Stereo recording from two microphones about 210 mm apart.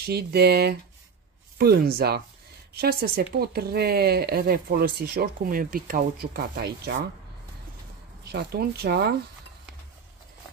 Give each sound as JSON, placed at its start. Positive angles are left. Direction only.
{"t": 0.0, "sound": "speech", "side_deg": -50}
{"t": 8.3, "sound": "speech", "side_deg": -50}